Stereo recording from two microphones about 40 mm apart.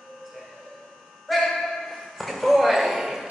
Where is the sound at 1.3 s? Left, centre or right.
Centre.